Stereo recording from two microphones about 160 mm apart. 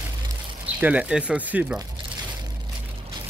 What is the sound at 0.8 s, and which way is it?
Speech, 10° right (ahead or behind).